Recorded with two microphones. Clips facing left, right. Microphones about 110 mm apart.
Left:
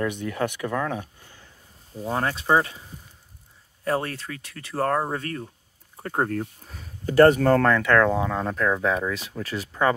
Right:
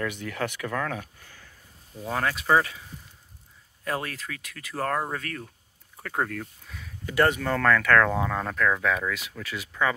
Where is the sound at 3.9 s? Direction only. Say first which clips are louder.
Left 5 dB; 35° left (ahead or behind).